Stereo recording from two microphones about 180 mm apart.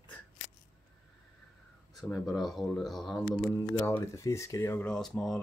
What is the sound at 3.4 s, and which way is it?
Speech, 15° left (ahead or behind).